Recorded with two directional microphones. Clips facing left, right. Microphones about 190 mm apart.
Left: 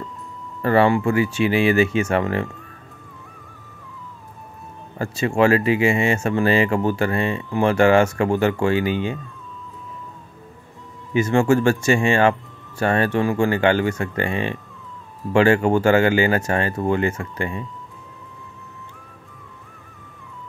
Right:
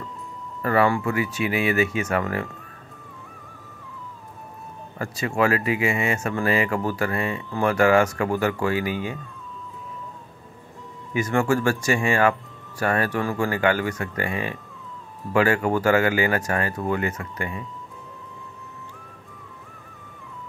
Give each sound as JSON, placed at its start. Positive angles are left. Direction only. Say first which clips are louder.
{"t": 0.6, "sound": "speech", "louder": "left 4 dB", "side_deg": 30}
{"t": 4.9, "sound": "speech", "louder": "left 5 dB", "side_deg": 25}
{"t": 11.1, "sound": "speech", "louder": "left 5 dB", "side_deg": 25}